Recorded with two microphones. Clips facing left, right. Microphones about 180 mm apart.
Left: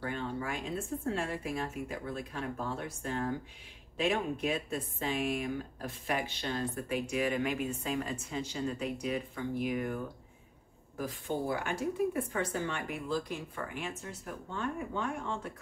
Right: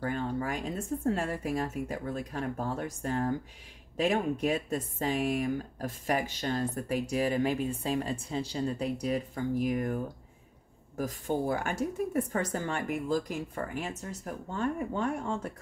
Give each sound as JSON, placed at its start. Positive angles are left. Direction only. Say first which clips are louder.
{"t": 0.0, "sound": "speech", "louder": "right 4 dB", "side_deg": -40}
{"t": 11.0, "sound": "speech", "louder": "right 4 dB", "side_deg": -45}